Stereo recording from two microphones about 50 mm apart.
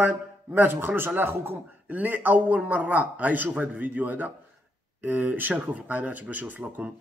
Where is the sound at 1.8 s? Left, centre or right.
Right.